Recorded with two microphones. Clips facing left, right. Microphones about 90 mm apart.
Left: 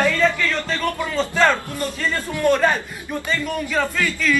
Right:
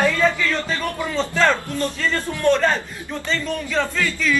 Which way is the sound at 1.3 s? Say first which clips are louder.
Left 1 dB; 15° left (ahead or behind).